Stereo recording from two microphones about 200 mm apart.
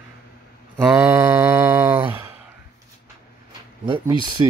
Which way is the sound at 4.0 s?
20° right (ahead or behind).